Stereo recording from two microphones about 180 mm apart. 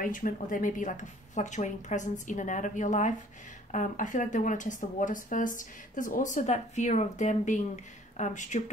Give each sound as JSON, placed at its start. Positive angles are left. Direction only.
{"t": 0.0, "sound": "speech", "side_deg": 50}